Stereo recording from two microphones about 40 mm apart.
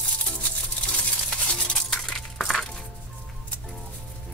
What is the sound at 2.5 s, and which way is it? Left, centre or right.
Music, centre.